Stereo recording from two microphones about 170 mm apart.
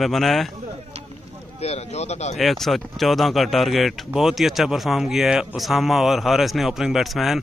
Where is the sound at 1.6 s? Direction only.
40° left (ahead or behind).